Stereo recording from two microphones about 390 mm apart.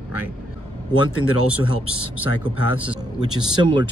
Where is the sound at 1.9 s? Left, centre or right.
Left.